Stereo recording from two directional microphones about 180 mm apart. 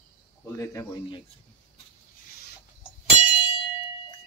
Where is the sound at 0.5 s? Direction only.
15° left (ahead or behind).